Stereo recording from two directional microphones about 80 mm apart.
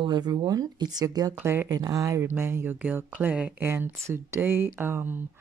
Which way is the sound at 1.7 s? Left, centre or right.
Right.